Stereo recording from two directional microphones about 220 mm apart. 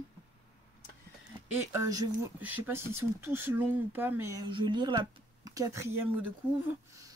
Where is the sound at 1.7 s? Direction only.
15° right (ahead or behind).